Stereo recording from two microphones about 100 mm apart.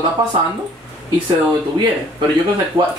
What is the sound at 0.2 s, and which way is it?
Speech, 45° right (ahead or behind).